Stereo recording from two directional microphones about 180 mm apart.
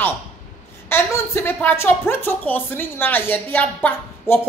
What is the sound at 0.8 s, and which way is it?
A woman's voice, 15° left (ahead or behind).